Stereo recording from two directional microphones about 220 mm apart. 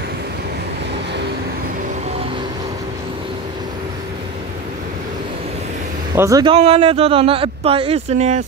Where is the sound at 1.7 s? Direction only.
35° right (ahead or behind).